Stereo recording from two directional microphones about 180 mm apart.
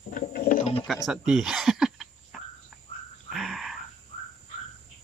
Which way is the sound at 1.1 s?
5° right (ahead or behind).